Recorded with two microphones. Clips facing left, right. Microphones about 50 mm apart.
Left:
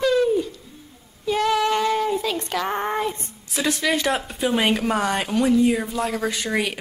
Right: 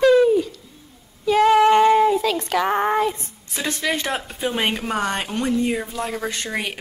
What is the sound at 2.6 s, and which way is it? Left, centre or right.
Speech, centre.